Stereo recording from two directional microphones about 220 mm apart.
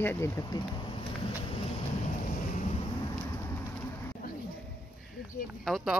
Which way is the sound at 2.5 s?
30° left (ahead or behind).